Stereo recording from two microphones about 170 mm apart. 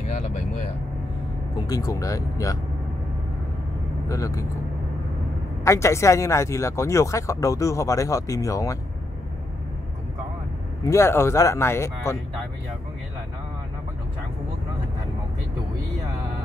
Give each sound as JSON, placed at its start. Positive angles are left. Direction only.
{"t": 1.5, "sound": "speech", "side_deg": 20}
{"t": 4.1, "sound": "speech", "side_deg": 20}
{"t": 5.6, "sound": "speech", "side_deg": 15}
{"t": 10.8, "sound": "speech", "side_deg": 15}